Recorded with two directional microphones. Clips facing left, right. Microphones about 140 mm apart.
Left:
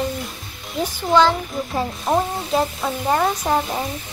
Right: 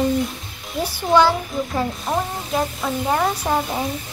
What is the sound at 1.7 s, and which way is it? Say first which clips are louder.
Speech: left 4 dB; 20° left (ahead or behind).